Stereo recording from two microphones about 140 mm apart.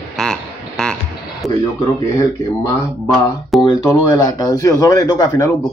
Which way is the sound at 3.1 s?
Centre (ahead or behind).